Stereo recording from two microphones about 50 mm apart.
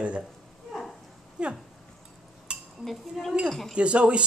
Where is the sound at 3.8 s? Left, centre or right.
Right.